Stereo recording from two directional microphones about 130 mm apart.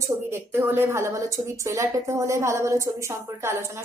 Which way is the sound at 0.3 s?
15° right (ahead or behind).